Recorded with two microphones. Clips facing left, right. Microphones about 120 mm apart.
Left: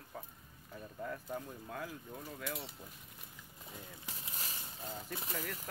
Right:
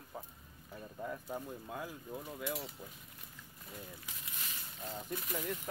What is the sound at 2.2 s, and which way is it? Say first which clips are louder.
Speech: right 5 dB; centre (ahead or behind).